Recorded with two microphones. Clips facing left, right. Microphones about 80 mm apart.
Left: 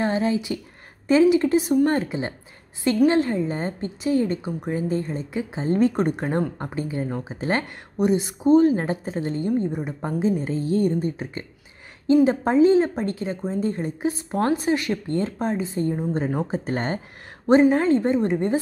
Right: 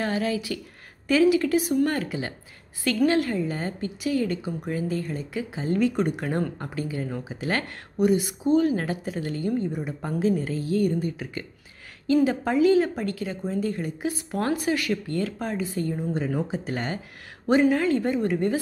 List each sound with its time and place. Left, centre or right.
0.0 s a woman's voice: left